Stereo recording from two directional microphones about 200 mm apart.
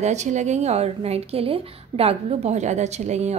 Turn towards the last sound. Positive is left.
turn(degrees=-35)  # may be behind; listen again after turning